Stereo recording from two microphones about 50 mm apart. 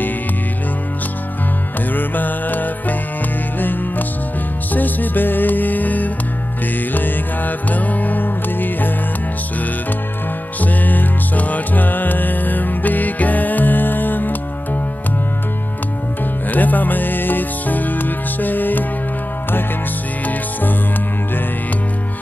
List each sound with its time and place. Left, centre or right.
2.0 s music: left
4.7 s music: left
10.6 s music: left
16.4 s music: left